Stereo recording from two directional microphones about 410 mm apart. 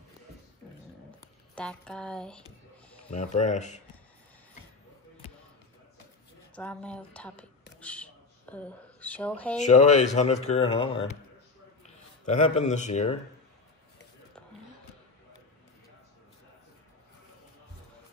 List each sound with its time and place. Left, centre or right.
1.2 s speech: centre
3.1 s speech: centre
6.5 s speech: centre
7.8 s a sound: centre
9.6 s speech: centre